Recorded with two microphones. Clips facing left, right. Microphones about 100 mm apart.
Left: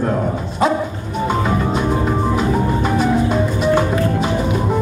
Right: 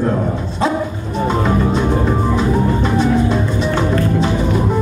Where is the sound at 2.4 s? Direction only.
5° left (ahead or behind).